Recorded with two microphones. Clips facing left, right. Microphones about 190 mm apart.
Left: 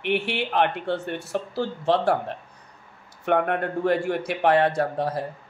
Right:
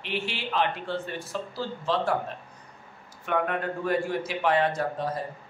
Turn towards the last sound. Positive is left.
turn(degrees=65)  # may be behind; listen again after turning